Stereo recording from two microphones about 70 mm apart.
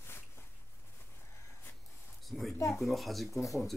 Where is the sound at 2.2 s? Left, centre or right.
Centre.